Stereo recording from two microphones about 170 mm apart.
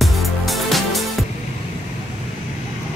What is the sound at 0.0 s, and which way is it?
Music, centre (ahead or behind).